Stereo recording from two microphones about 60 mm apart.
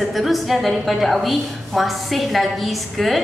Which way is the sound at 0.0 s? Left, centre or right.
Centre.